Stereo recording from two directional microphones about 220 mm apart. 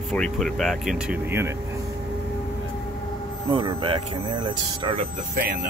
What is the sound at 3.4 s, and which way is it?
Speech, 25° right (ahead or behind).